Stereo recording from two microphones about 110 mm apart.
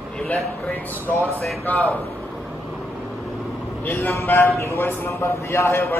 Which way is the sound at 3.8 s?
20° left (ahead or behind).